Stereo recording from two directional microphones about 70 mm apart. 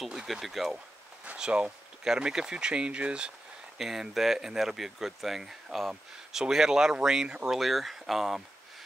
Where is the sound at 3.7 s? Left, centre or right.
Centre.